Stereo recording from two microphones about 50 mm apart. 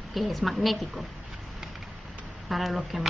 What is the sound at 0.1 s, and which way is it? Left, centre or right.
Speech, centre.